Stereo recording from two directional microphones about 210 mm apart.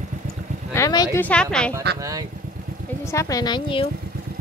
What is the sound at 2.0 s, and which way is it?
Speech, 15° right (ahead or behind).